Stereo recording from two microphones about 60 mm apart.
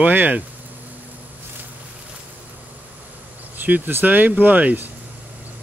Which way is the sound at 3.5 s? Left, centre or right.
Right.